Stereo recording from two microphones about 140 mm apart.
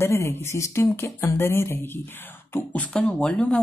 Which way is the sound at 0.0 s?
20° left (ahead or behind).